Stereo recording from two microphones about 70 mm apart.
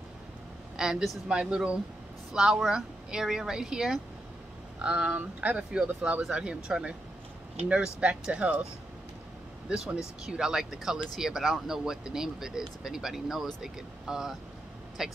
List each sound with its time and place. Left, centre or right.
0.7 s speech: centre
9.7 s speech: centre